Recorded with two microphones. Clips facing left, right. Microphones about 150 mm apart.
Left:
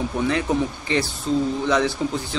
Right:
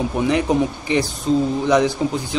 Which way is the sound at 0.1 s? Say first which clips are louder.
Right 4 dB; 15° right (ahead or behind).